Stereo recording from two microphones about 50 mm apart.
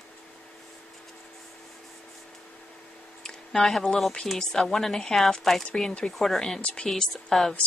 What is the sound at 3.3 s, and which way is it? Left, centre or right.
A woman's voice, centre.